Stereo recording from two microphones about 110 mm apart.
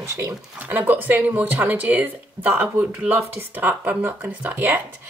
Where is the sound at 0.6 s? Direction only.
15° right (ahead or behind).